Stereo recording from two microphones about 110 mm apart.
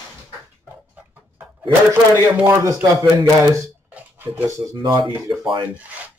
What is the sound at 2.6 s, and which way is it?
Speech, 30° right (ahead or behind).